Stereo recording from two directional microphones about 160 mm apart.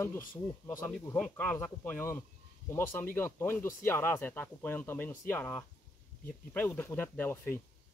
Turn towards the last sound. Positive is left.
turn(degrees=15)  # may be behind; listen again after turning